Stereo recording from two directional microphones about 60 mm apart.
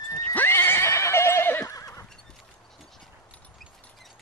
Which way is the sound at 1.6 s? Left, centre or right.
Left.